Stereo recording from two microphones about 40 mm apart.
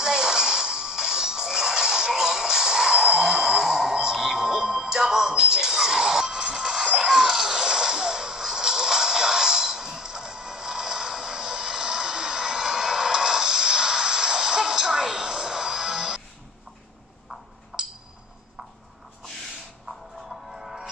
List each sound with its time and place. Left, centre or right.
0.0 s music: centre
17.7 s a sound: right
20.2 s music: centre